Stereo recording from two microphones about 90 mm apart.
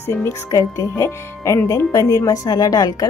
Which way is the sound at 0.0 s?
30° left (ahead or behind).